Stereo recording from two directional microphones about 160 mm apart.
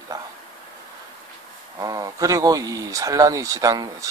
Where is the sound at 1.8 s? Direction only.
20° right (ahead or behind).